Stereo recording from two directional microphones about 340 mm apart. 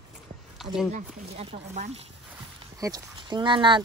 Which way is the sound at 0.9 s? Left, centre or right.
Centre.